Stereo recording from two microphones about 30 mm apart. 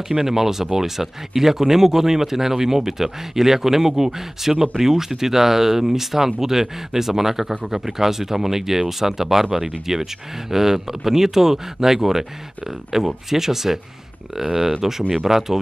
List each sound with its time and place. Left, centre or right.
0.1 s speech: centre